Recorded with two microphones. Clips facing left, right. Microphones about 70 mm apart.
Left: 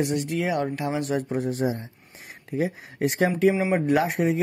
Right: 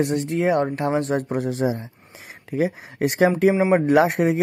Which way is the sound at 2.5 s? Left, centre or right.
Right.